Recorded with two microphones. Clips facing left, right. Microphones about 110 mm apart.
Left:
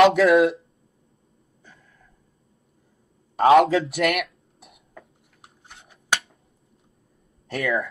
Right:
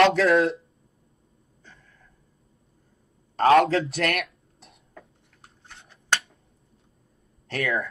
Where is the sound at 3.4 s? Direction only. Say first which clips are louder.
Left 2 dB; 10° left (ahead or behind).